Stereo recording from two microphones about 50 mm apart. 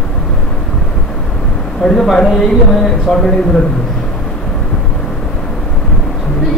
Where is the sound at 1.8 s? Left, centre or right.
Centre.